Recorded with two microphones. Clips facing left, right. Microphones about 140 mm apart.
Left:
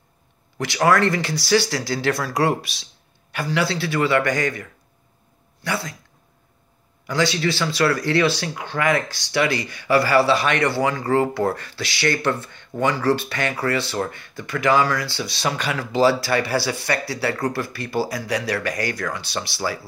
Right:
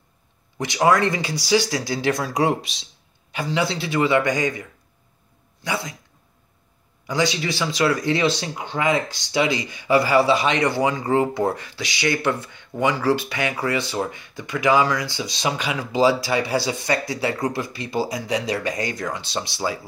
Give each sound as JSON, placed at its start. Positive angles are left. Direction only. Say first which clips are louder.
{"t": 0.6, "sound": "speech", "louder": "even", "side_deg": -20}
{"t": 7.1, "sound": "speech", "louder": "left 1 dB", "side_deg": -15}